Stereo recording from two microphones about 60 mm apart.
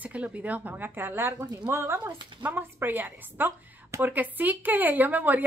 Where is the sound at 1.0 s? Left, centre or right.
Right.